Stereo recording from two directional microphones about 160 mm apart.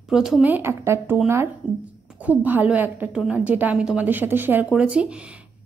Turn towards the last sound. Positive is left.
turn(degrees=-5)  # may be behind; listen again after turning